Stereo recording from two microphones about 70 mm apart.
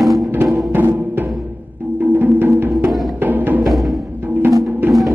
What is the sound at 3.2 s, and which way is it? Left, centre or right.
Music, right.